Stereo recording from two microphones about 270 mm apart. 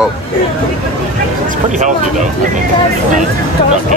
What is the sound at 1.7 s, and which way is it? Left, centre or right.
Speech, right.